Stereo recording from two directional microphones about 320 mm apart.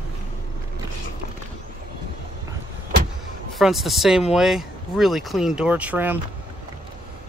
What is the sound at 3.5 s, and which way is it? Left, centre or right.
Speech, centre.